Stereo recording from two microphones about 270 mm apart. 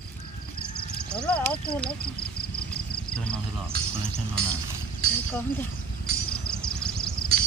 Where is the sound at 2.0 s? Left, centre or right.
Left.